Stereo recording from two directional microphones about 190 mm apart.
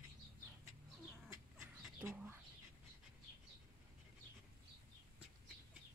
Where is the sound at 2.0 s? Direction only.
10° right (ahead or behind).